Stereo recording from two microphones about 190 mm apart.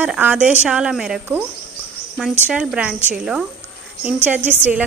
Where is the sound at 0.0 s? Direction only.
10° right (ahead or behind).